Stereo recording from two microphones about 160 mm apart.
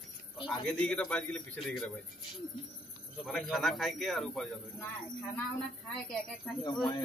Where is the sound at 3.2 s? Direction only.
Centre (ahead or behind).